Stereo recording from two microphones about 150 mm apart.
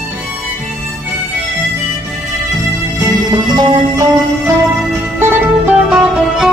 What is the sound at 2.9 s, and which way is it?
Music, 25° right (ahead or behind).